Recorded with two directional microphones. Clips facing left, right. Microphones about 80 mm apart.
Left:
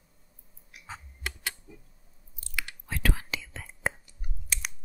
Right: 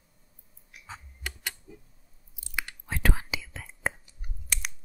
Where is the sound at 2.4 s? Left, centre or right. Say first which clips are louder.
Right 1 dB; right.